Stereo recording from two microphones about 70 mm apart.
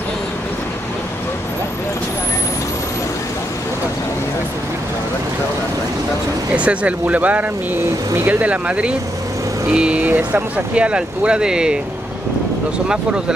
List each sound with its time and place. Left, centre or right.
6.5 s speech: centre